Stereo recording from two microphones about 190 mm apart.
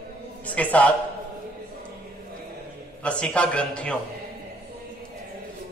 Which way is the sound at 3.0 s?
5° left (ahead or behind).